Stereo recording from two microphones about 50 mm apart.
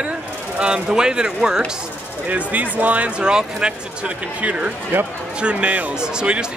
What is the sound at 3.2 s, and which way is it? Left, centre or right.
Speech, centre.